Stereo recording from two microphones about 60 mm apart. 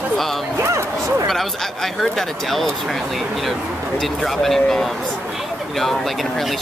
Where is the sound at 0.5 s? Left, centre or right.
Right.